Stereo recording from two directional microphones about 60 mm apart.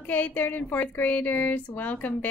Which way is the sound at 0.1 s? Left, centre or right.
Left.